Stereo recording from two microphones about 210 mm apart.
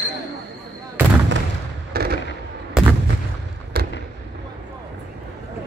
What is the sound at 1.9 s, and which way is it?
Fireworks, 45° right (ahead or behind).